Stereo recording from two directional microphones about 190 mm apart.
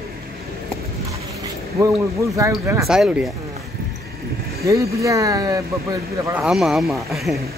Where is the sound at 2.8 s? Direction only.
5° right (ahead or behind).